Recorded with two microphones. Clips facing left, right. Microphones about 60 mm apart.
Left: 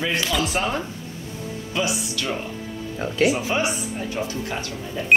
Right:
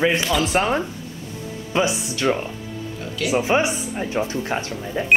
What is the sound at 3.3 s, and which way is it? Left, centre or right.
Speech, right.